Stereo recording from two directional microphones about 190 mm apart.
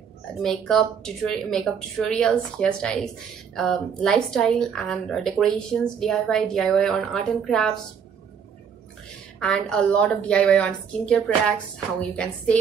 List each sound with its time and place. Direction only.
0.4 s speech: centre (ahead or behind)
9.4 s speech: 5° left (ahead or behind)